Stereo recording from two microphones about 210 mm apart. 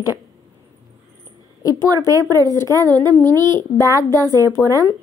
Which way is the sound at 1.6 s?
15° left (ahead or behind).